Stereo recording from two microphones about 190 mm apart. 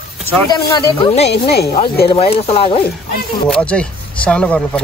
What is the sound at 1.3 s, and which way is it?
Speech, 60° left (ahead or behind).